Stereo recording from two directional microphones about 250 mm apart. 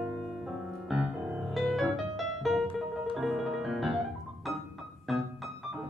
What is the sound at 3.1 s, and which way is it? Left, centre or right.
Piano, centre.